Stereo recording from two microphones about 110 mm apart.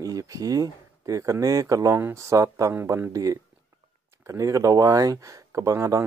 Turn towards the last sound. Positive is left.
turn(degrees=-30)  # may be behind; listen again after turning